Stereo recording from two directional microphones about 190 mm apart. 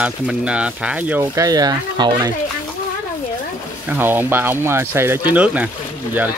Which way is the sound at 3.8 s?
10° right (ahead or behind).